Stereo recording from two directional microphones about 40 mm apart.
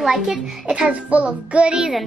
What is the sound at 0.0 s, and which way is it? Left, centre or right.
Speech, centre.